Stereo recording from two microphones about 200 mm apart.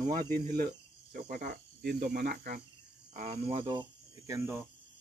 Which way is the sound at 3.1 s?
35° right (ahead or behind).